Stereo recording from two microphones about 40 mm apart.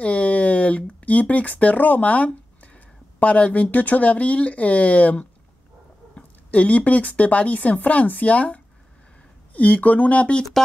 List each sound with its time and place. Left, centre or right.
0.0 s speech: left
6.5 s speech: left